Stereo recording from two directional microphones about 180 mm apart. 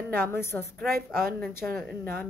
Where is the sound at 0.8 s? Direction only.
Centre (ahead or behind).